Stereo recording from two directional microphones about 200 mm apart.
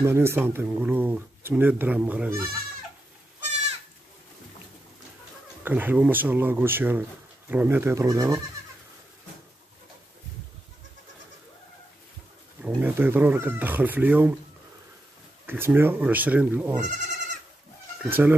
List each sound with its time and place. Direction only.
0.0 s speech: 10° right (ahead or behind)
5.6 s speech: 10° right (ahead or behind)
12.6 s speech: 10° right (ahead or behind)
15.4 s speech: 10° right (ahead or behind)
16.8 s goat: 40° right (ahead or behind)
18.0 s speech: 10° right (ahead or behind)